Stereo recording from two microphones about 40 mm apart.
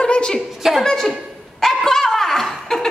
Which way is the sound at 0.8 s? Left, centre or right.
Centre.